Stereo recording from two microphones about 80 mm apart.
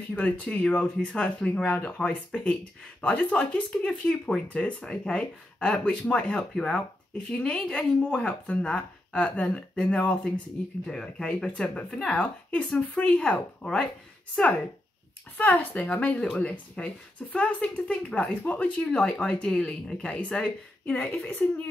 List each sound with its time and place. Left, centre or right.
0.1 s speech: centre
15.3 s speech: centre